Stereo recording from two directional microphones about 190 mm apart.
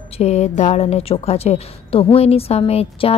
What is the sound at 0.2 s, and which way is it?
A woman's voice, 35° left (ahead or behind).